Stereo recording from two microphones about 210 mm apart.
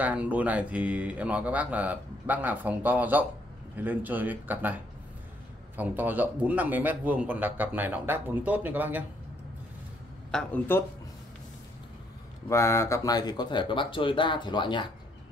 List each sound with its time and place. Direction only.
0.0 s speech: 5° right (ahead or behind)
5.8 s speech: 10° right (ahead or behind)
10.3 s speech: 5° left (ahead or behind)
12.4 s speech: 15° left (ahead or behind)